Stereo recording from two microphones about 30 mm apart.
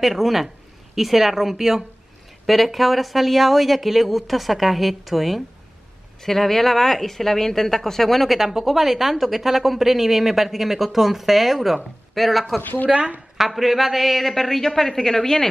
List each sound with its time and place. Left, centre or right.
0.0 s speech: centre
8.4 s speech: centre
12.9 s speech: centre